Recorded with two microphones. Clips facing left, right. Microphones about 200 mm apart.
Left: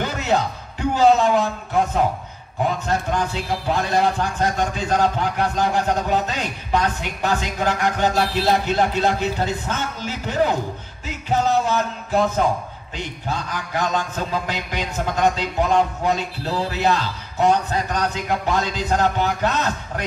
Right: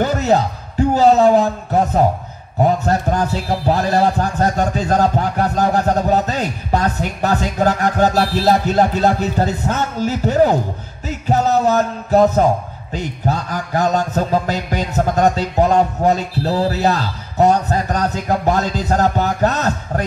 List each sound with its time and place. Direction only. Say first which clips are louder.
0.0 s a man's voice: right 6 dB; 40° right (ahead or behind)